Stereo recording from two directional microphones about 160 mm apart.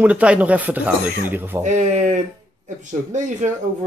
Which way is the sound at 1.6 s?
50° right (ahead or behind).